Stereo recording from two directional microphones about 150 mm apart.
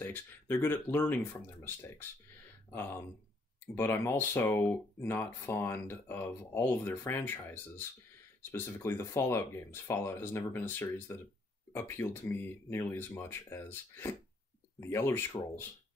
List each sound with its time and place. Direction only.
0.0 s speech: 15° left (ahead or behind)